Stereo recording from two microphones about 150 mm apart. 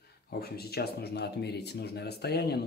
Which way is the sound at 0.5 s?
90° left.